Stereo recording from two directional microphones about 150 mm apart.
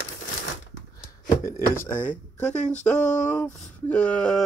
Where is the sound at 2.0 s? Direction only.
55° left (ahead or behind).